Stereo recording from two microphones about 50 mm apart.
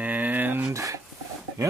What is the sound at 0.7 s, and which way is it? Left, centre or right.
Speech, right.